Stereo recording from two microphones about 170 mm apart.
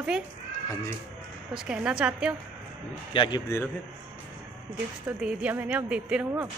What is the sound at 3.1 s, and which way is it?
Speech, 25° left (ahead or behind).